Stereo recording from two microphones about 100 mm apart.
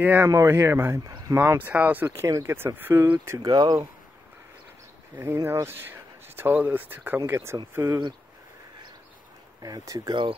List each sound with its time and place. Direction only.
0.0 s speech: 25° right (ahead or behind)
1.0 s a sound: 40° right (ahead or behind)
1.3 s speech: 25° right (ahead or behind)
2.2 s speech: 30° right (ahead or behind)
3.4 s speech: 45° right (ahead or behind)
5.1 s speech: 25° right (ahead or behind)
9.6 s speech: 40° right (ahead or behind)